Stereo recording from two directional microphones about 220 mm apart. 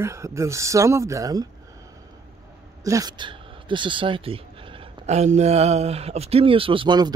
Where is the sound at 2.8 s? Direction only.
15° right (ahead or behind).